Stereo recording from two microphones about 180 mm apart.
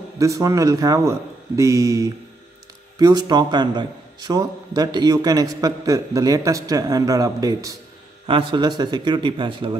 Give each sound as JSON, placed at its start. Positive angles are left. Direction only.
{"t": 0.2, "sound": "a man's voice", "side_deg": -15}